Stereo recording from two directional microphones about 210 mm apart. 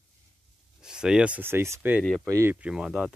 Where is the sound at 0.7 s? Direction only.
5° right (ahead or behind).